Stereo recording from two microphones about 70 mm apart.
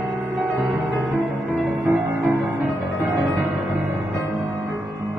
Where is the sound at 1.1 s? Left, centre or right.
Right.